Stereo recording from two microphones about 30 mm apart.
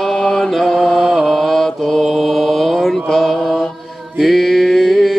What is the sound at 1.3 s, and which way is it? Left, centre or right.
Mantra, centre.